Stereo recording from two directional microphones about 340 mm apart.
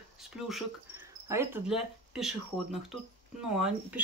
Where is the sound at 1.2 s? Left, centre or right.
Centre.